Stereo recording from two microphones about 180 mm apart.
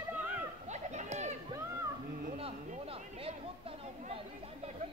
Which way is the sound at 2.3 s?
35° right (ahead or behind).